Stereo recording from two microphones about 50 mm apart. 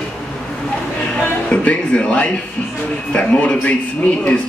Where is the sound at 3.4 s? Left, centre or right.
Left.